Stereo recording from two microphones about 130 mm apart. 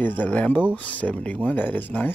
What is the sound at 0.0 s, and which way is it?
Speech, 15° left (ahead or behind).